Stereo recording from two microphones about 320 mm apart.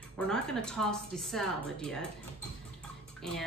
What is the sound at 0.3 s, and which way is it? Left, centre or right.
A woman's voice, centre.